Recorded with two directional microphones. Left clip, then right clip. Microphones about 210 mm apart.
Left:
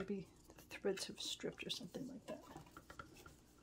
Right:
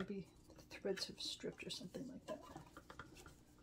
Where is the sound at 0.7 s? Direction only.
40° left (ahead or behind).